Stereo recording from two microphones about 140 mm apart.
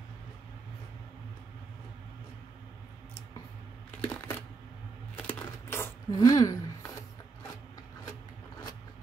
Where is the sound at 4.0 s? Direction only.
15° left (ahead or behind).